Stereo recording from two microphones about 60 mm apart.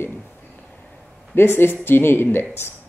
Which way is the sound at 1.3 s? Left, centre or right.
Left.